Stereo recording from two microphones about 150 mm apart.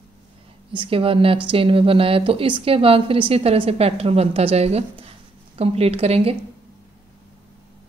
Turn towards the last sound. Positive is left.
turn(degrees=-40)  # may be behind; listen again after turning